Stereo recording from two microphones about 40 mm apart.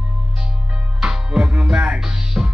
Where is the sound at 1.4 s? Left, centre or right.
Right.